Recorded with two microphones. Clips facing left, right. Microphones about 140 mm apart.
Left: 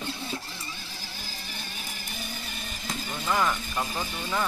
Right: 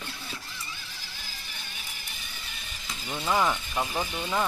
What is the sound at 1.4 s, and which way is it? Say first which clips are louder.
Mechanisms: left 5 dB; 40° left (ahead or behind).